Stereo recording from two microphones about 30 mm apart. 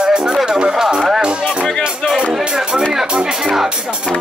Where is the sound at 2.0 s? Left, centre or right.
Left.